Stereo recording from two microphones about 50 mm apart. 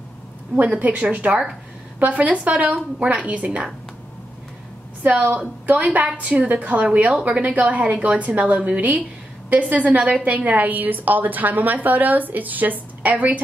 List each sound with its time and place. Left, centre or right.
0.6 s a woman's voice: right
5.0 s a woman's voice: right